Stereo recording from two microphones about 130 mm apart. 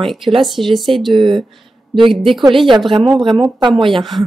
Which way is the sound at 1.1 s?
40° right (ahead or behind).